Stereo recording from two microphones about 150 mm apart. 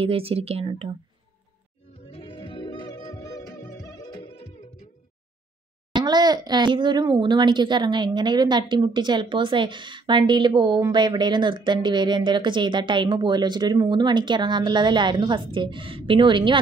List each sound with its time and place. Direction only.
0.0 s a child's voice: 40° right (ahead or behind)
2.0 s music: 40° left (ahead or behind); by 4.1 s 25° left (ahead or behind)
4.1 s music: 35° left (ahead or behind)
5.9 s a child's voice: 30° right (ahead or behind)